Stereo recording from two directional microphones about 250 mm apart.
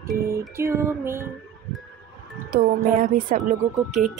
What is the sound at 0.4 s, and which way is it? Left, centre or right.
Music, centre.